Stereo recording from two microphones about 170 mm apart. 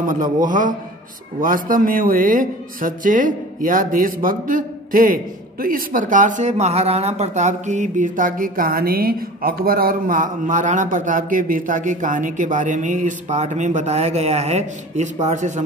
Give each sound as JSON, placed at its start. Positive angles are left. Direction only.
{"t": 0.0, "sound": "a man's voice", "side_deg": -50}